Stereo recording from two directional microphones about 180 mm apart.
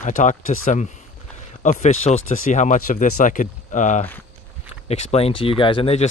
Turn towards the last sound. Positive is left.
turn(degrees=35)  # may be behind; listen again after turning